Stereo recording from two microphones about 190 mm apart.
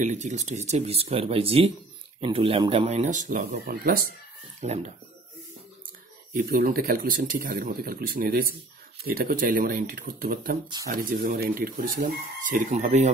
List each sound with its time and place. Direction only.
0.0 s speech: 40° right (ahead or behind)
4.6 s speech: 35° right (ahead or behind)
6.3 s speech: 50° right (ahead or behind)